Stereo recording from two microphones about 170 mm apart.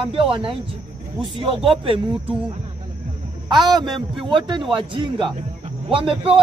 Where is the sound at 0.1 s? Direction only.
30° right (ahead or behind).